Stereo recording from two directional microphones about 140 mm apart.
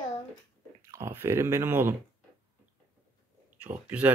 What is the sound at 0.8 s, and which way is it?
Speech, 20° right (ahead or behind).